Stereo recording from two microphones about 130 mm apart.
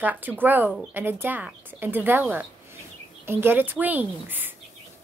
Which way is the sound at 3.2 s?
15° right (ahead or behind).